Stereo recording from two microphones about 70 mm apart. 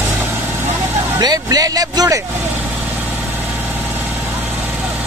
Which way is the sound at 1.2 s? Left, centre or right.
Right.